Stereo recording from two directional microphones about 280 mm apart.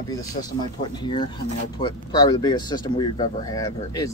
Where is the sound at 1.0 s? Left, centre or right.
Centre.